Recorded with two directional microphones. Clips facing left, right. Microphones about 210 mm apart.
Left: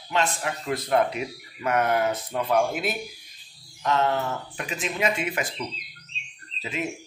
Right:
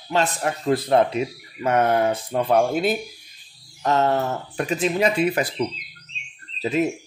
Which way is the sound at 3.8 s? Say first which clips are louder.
Right 4 dB; 40° right (ahead or behind).